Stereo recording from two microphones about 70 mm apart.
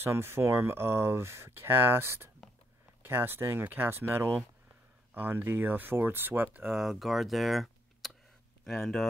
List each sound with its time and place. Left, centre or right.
0.0 s speech: right
6.7 s speech: centre